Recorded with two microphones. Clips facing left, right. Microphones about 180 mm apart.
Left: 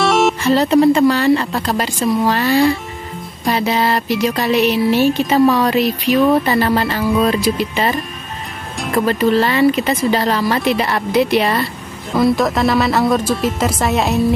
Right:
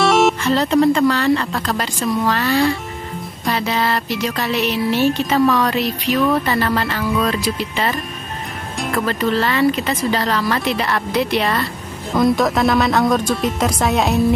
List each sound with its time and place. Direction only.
0.0 s music: centre (ahead or behind)
0.4 s a woman's voice: 10° left (ahead or behind)
8.9 s a woman's voice: 20° left (ahead or behind)
12.1 s speech: 5° left (ahead or behind)